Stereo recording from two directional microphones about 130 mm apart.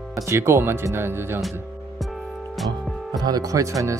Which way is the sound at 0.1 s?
20° right (ahead or behind).